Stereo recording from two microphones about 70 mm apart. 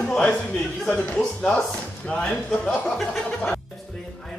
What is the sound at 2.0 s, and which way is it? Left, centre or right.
A man's voice, centre.